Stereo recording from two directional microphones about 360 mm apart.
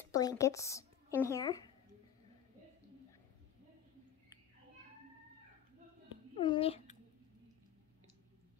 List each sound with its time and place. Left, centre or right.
0.1 s speech: centre
6.3 s a child's voice: centre